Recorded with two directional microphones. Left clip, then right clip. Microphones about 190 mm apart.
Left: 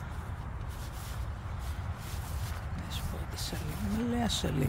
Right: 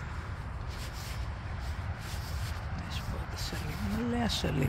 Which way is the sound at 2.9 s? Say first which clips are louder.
Even; 25° left (ahead or behind).